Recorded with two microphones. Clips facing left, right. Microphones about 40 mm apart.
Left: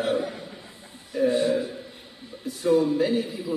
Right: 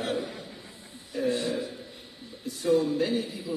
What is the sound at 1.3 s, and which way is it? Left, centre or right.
Speech, left.